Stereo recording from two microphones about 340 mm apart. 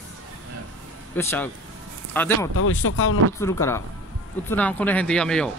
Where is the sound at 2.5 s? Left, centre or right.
Left.